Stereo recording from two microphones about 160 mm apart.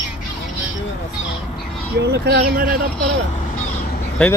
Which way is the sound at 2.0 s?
90° right.